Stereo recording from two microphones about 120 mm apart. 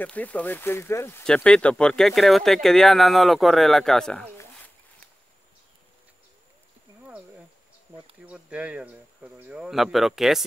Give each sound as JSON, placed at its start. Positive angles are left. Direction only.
{"t": 0.0, "sound": "speech", "side_deg": 10}
{"t": 1.2, "sound": "speech", "side_deg": 5}
{"t": 8.3, "sound": "speech", "side_deg": -10}